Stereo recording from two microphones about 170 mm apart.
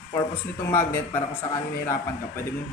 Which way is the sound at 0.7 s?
15° left (ahead or behind).